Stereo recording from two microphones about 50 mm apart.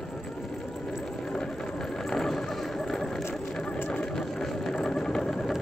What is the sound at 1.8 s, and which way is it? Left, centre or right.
Vehicle, centre.